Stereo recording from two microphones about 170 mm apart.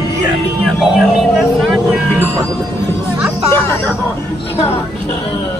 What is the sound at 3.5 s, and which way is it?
Speech, 15° left (ahead or behind).